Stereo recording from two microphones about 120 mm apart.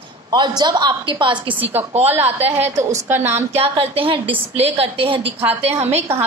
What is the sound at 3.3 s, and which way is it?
A woman's voice, 55° right (ahead or behind).